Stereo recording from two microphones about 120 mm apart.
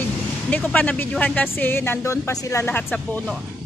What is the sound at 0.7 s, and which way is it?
Speech, 15° left (ahead or behind).